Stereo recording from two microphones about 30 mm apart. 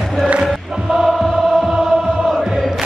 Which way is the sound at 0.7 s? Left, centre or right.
Centre.